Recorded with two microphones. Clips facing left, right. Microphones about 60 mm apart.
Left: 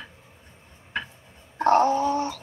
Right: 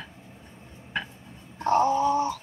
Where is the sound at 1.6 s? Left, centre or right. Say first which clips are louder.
Left 3 dB; left.